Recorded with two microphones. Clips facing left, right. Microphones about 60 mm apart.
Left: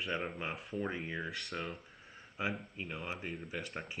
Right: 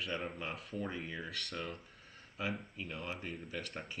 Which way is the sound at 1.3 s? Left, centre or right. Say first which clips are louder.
Left 1 dB; centre.